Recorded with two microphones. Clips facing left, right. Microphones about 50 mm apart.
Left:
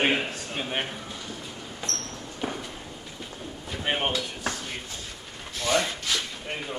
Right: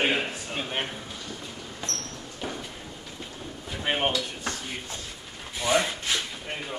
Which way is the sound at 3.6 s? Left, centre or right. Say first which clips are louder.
Right 1 dB; centre.